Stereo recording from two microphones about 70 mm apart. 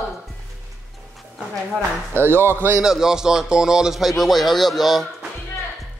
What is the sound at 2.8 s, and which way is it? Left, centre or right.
Speech, centre.